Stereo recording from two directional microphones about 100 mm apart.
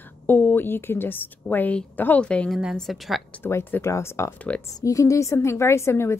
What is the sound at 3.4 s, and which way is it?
A woman's voice, 20° left (ahead or behind).